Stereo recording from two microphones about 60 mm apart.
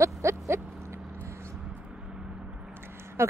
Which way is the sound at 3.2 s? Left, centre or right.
Right.